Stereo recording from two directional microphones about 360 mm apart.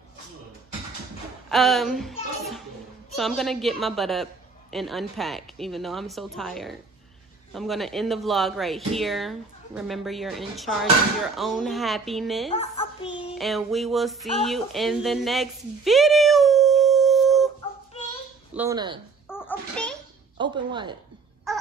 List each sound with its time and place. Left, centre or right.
1.5 s a man's voice: centre
12.5 s a woman's voice: centre
13.4 s a man's voice: centre
18.5 s speech: centre
19.2 s a sound: centre
20.3 s speech: centre
21.5 s crow: centre